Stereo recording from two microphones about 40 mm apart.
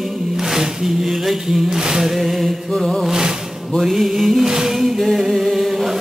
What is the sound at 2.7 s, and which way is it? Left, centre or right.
Music, centre.